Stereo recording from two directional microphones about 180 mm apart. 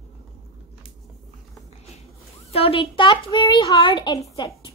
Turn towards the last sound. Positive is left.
turn(degrees=20)  # may be behind; listen again after turning